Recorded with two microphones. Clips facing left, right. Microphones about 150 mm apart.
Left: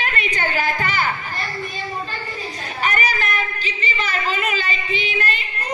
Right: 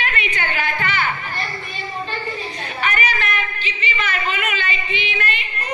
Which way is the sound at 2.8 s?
40° left (ahead or behind).